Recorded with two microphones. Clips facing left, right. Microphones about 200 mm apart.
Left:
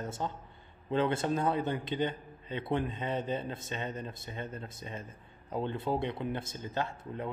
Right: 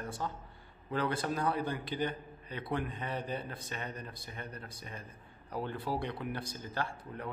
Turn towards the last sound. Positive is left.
turn(degrees=20)  # may be behind; listen again after turning